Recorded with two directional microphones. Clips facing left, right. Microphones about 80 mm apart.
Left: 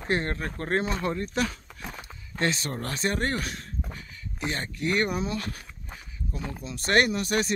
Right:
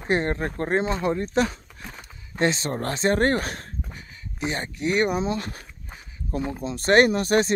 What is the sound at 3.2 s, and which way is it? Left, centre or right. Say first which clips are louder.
Speech: right 7 dB; right.